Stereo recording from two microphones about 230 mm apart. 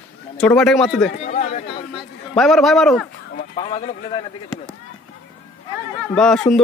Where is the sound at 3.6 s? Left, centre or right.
Left.